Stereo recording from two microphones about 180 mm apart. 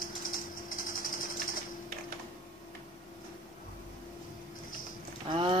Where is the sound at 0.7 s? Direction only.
50° left (ahead or behind).